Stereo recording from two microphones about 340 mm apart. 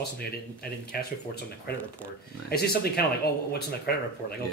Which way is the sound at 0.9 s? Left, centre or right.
Left.